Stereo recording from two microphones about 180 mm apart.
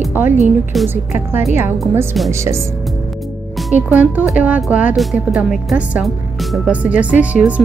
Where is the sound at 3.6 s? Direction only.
10° right (ahead or behind).